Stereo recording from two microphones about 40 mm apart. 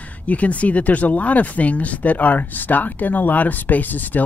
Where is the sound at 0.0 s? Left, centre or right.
Left.